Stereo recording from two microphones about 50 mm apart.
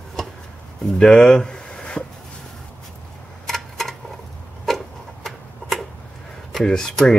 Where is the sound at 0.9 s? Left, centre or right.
Centre.